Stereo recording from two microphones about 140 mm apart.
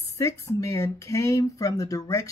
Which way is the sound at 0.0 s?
20° left (ahead or behind).